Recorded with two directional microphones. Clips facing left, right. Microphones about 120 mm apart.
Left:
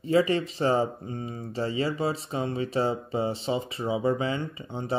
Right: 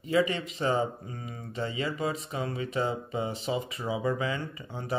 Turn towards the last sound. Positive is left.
turn(degrees=25)  # may be behind; listen again after turning